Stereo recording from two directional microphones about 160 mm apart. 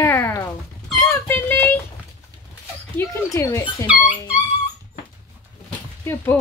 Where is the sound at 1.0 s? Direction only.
15° left (ahead or behind).